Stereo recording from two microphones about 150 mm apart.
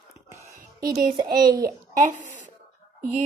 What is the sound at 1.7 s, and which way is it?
Speech, 60° right (ahead or behind).